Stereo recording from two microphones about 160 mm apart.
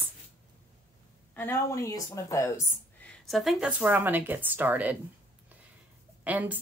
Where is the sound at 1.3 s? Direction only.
15° left (ahead or behind).